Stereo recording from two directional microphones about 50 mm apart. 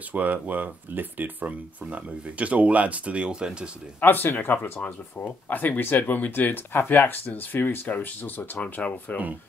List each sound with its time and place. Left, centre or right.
0.1 s speech: right; by 3.5 s centre
4.0 s speech: left